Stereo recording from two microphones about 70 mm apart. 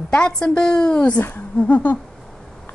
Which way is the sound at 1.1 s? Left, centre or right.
Left.